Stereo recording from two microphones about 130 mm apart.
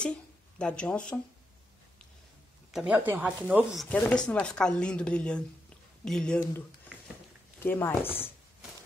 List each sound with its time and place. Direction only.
0.0 s speech: 5° left (ahead or behind)
2.7 s speech: 10° right (ahead or behind)
3.9 s speech: 10° left (ahead or behind)
7.6 s speech: 15° left (ahead or behind)